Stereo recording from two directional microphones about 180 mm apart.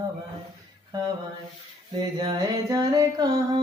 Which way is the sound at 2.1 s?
20° right (ahead or behind).